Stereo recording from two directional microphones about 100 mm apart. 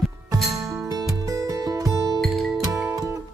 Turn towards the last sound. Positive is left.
turn(degrees=-35)  # may be behind; listen again after turning